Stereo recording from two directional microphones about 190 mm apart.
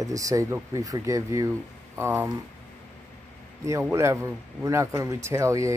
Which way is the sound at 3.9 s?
15° right (ahead or behind).